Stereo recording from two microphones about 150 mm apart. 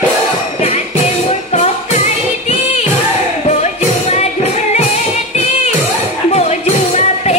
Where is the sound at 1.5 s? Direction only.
50° left (ahead or behind).